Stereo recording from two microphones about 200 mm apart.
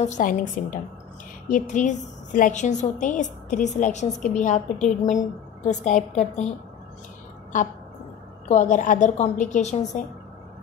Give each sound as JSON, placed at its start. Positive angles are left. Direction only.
{"t": 0.0, "sound": "a woman's voice", "side_deg": 40}
{"t": 7.5, "sound": "a woman's voice", "side_deg": 40}